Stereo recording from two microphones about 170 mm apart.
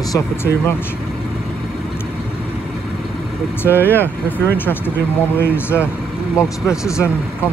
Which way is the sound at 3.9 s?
10° left (ahead or behind).